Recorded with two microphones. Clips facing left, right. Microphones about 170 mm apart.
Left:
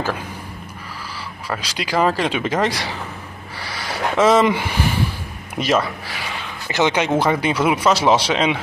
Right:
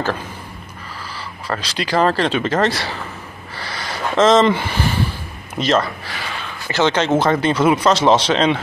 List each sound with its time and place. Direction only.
1.5 s speech: 10° left (ahead or behind)
3.5 s a sound: 10° left (ahead or behind)
5.6 s a man's voice: 10° left (ahead or behind)